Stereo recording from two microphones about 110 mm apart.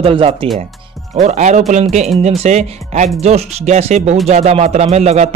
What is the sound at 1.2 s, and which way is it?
A man's voice, 90° right.